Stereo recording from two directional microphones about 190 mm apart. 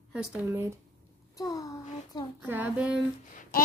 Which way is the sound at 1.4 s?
20° left (ahead or behind).